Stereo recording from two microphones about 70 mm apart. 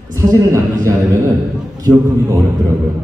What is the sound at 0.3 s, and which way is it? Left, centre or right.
Speech, right.